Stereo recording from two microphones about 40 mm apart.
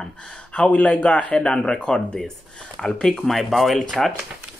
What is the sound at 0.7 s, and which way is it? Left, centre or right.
Speech, left.